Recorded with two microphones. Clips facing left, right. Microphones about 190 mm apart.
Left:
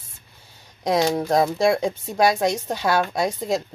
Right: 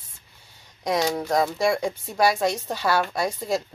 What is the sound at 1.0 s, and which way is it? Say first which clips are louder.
Speech: left 3 dB; 25° left (ahead or behind).